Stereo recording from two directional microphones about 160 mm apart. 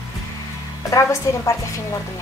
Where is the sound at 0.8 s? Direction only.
20° left (ahead or behind).